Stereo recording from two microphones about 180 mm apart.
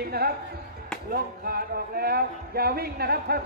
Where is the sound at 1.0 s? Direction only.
55° right (ahead or behind).